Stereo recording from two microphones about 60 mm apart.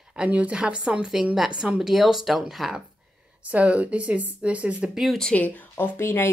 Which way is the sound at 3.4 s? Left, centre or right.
Right.